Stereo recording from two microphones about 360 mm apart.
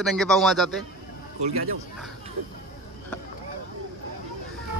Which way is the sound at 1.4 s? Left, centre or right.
Right.